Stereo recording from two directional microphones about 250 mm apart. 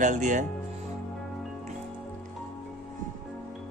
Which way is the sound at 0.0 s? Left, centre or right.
Right.